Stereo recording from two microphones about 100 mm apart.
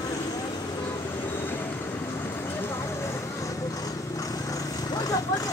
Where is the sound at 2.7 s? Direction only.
25° left (ahead or behind).